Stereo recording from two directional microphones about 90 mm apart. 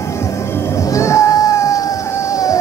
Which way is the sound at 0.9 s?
35° left (ahead or behind).